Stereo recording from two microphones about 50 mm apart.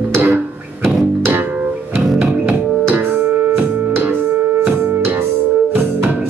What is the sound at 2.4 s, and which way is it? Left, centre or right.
Music, right.